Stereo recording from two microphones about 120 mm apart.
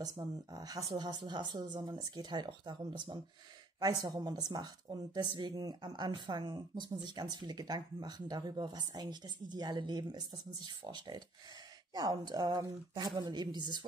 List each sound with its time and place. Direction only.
0.0 s a woman's voice: 30° right (ahead or behind)